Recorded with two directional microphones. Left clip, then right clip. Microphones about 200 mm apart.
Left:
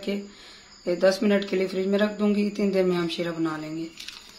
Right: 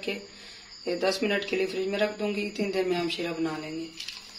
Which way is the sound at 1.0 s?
50° left (ahead or behind).